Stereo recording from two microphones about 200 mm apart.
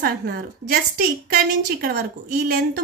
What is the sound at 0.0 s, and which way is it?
A woman's voice, 50° right (ahead or behind).